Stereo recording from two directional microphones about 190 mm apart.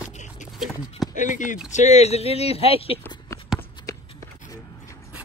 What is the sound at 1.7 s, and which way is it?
Speech, 40° left (ahead or behind).